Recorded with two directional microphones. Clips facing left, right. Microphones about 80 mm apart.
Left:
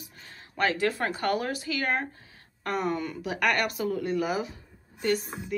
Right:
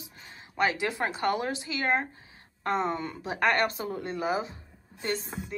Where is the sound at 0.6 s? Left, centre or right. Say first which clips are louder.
Left 1 dB; centre.